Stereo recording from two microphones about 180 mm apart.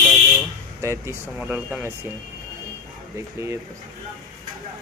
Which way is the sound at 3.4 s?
15° right (ahead or behind).